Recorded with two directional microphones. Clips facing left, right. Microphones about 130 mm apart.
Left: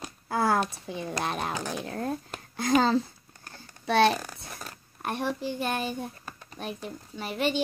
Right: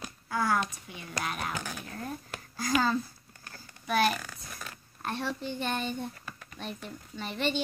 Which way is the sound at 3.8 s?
25° left (ahead or behind).